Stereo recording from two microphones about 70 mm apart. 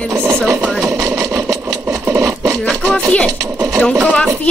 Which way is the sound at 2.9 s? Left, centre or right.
Centre.